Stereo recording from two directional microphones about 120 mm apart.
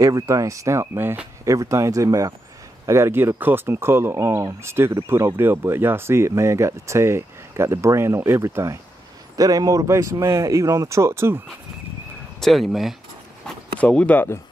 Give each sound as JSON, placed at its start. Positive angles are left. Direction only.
{"t": 0.0, "sound": "speech", "side_deg": -25}
{"t": 12.4, "sound": "speech", "side_deg": 0}
{"t": 13.7, "sound": "speech", "side_deg": 10}